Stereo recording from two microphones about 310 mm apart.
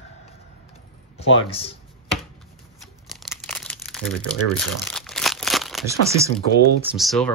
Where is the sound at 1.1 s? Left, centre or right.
Centre.